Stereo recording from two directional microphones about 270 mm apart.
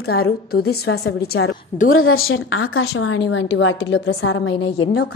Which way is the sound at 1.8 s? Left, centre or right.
Left.